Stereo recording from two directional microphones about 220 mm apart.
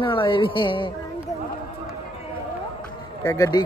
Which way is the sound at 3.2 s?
15° left (ahead or behind).